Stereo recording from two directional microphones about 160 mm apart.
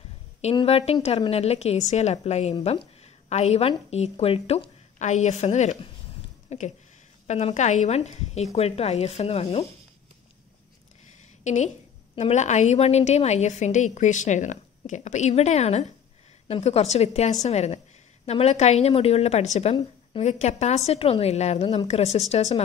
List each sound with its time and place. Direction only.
0.6 s a woman's voice: 40° left (ahead or behind)
11.4 s a woman's voice: 50° left (ahead or behind)